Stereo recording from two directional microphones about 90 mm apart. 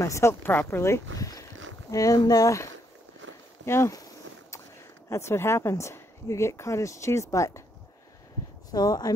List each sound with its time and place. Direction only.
0.0 s speech: 30° left (ahead or behind)
3.6 s a sound: 30° left (ahead or behind)
5.1 s speech: 30° left (ahead or behind)
8.7 s speech: 45° left (ahead or behind)